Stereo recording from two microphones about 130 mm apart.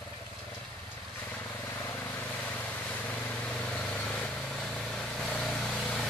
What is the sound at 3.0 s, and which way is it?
Vehicle, 10° left (ahead or behind).